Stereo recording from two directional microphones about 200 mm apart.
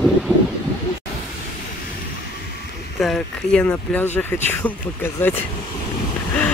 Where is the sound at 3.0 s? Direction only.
5° left (ahead or behind).